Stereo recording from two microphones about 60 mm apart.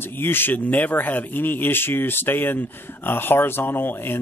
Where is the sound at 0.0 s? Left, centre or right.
Left.